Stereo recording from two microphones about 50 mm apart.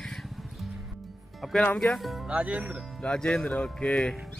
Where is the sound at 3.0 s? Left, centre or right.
Centre.